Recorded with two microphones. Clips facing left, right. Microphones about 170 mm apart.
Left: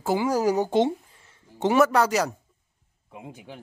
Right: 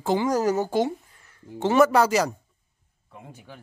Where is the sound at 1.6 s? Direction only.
10° left (ahead or behind).